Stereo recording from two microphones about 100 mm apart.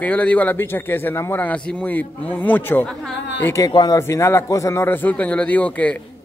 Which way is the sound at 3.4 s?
30° left (ahead or behind).